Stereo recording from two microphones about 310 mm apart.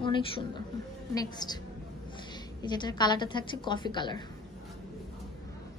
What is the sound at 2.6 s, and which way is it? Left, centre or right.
A woman's voice, centre.